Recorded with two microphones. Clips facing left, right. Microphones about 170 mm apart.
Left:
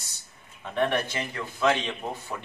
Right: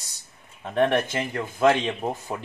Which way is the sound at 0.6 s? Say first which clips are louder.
Right 4 dB; 45° right (ahead or behind).